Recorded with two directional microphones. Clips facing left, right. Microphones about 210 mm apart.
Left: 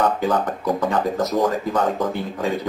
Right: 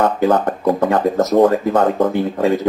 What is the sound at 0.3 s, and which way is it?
Speech, 55° right (ahead or behind).